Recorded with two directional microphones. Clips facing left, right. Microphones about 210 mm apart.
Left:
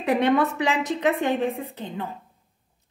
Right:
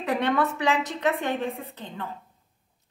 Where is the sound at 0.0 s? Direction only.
15° left (ahead or behind).